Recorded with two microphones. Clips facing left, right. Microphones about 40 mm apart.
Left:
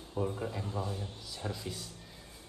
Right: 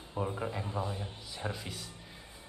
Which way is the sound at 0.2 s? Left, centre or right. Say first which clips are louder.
Even; right.